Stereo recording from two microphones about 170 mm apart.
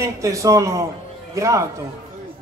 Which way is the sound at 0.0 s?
20° right (ahead or behind).